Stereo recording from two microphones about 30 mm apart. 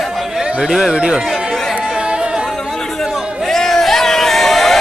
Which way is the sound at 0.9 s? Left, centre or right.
Right.